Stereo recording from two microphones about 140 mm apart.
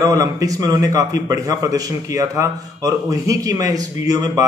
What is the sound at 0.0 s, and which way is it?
A man's voice, 25° right (ahead or behind).